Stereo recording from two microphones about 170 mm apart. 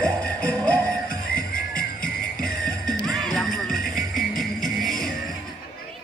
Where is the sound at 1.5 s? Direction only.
55° left (ahead or behind).